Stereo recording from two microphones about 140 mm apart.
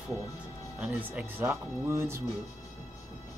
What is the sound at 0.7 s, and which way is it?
Speech, 10° right (ahead or behind).